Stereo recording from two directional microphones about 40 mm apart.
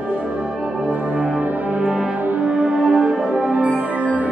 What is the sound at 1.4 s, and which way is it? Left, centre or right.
Brass instrument, right.